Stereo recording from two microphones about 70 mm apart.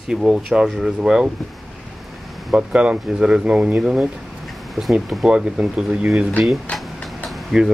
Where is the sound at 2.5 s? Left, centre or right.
Centre.